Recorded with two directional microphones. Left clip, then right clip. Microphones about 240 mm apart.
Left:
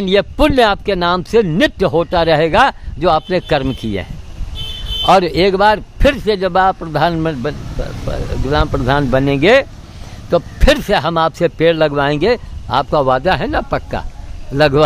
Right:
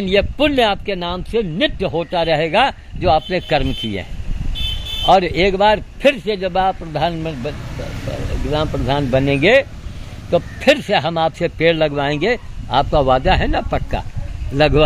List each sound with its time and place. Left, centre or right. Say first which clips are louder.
0.0 s a man's voice: left 3 dB; centre